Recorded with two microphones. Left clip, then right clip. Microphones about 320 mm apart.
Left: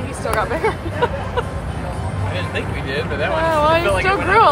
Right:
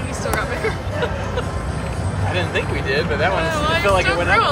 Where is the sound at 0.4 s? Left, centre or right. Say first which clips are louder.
Left 3 dB; centre.